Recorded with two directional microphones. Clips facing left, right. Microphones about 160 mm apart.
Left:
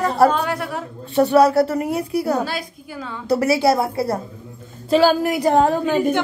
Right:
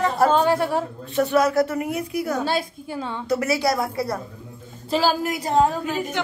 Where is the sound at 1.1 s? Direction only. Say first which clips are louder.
Left 5 dB; 35° left (ahead or behind).